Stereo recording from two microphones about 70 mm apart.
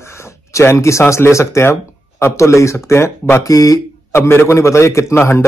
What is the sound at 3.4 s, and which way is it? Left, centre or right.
Speech, left.